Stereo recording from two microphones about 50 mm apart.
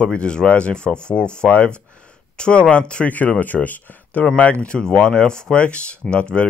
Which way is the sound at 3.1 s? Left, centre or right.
Left.